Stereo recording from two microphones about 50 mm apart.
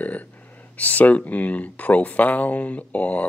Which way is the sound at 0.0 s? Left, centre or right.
Left.